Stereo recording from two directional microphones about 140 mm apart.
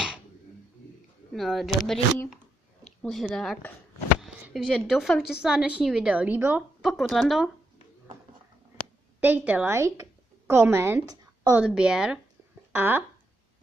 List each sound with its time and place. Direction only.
1.3 s a woman's voice: centre (ahead or behind)
6.8 s speech: centre (ahead or behind)
9.2 s a woman's voice: 10° right (ahead or behind)
11.6 s speech: 5° right (ahead or behind)